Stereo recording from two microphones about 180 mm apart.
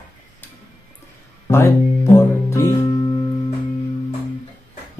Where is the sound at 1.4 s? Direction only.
15° left (ahead or behind).